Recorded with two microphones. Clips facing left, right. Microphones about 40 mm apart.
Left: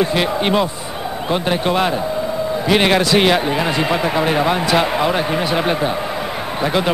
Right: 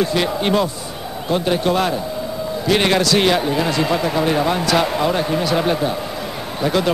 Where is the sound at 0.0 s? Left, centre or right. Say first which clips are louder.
Left 2 dB; left.